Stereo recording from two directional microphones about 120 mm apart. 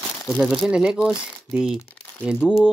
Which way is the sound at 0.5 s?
5° right (ahead or behind).